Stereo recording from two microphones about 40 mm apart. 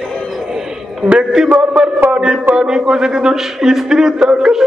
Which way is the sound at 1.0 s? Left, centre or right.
Centre.